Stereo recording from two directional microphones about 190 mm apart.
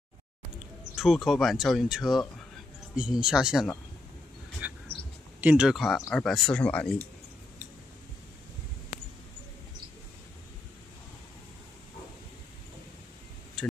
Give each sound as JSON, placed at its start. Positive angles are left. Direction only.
{"t": 0.9, "sound": "speech", "side_deg": 0}
{"t": 4.6, "sound": "a sound", "side_deg": -5}
{"t": 5.4, "sound": "speech", "side_deg": -5}